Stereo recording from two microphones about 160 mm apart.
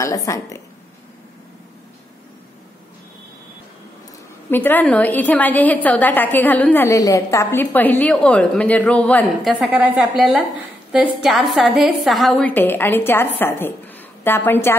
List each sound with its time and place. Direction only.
0.0 s a woman's voice: 20° left (ahead or behind)
4.5 s a woman's voice: 10° left (ahead or behind)